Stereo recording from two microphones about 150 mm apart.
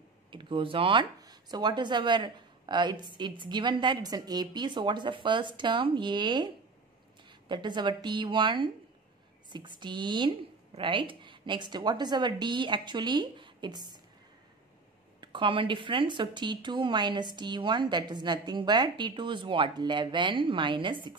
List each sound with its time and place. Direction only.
0.3 s speech: 35° right (ahead or behind)
15.1 s speech: 35° right (ahead or behind)